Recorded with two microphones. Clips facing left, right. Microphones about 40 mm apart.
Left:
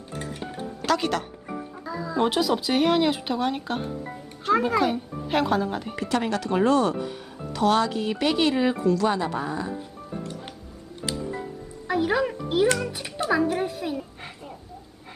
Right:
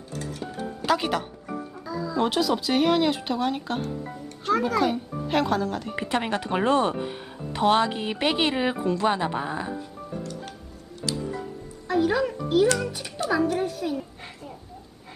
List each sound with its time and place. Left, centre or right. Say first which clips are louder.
0.2 s music: even; left
0.8 s speech: even; centre
1.9 s a sound: right 1 dB; left
2.1 s a child's voice: left 1 dB; centre
5.9 s speech: left 1 dB; right
11.9 s music: right 1 dB; centre
12.9 s speech: left 1 dB; centre
13.9 s a sound: even; centre